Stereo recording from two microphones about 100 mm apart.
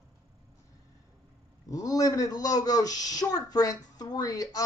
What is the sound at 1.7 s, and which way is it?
Speech, 35° left (ahead or behind).